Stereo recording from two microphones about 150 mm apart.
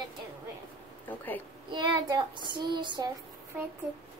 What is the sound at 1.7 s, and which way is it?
Child singing, 30° right (ahead or behind).